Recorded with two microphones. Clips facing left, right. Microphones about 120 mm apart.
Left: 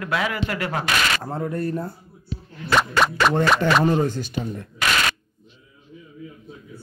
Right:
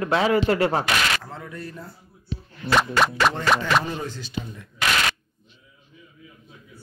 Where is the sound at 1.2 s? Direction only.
45° left (ahead or behind).